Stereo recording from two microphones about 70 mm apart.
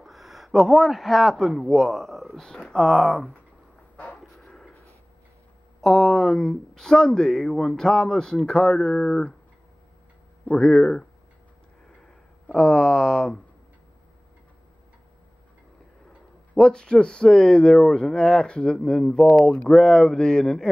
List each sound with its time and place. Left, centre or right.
0.0 s a man's voice: centre
3.9 s a sound: left
4.5 s a sound: centre
5.8 s speech: centre
10.4 s speech: centre
12.4 s speech: centre
16.5 s speech: centre